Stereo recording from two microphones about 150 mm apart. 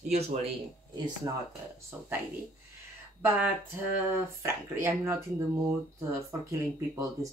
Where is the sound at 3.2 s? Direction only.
15° right (ahead or behind).